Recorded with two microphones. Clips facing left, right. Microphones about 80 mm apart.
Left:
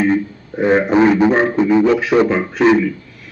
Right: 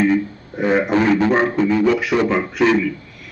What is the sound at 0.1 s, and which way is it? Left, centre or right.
A man's voice, left.